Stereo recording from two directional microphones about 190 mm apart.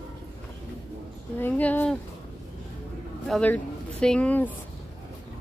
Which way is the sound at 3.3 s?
5° left (ahead or behind).